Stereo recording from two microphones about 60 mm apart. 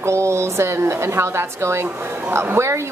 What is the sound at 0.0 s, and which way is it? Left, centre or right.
A woman's voice, right.